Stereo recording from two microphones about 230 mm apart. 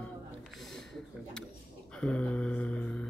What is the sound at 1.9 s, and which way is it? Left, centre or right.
Speech, centre.